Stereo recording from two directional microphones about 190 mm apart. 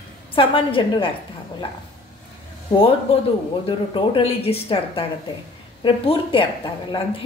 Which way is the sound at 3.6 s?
25° left (ahead or behind).